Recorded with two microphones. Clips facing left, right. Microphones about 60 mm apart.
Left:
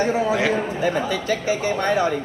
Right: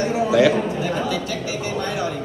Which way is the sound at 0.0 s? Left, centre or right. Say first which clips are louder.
Right 3 dB; left.